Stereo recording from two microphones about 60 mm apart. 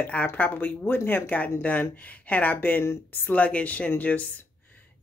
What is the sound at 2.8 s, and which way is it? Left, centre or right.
Speech, left.